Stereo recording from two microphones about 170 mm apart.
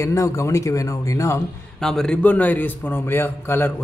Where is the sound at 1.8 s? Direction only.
5° left (ahead or behind).